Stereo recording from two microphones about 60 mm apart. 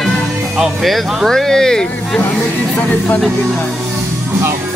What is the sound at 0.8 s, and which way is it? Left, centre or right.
Speech, centre.